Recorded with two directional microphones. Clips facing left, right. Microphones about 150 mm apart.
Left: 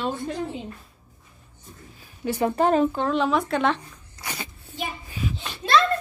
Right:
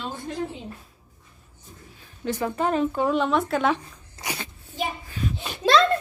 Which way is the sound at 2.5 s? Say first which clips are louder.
Left 4 dB; 40° left (ahead or behind).